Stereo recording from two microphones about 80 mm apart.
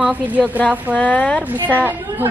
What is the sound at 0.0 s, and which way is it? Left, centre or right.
Speech, centre.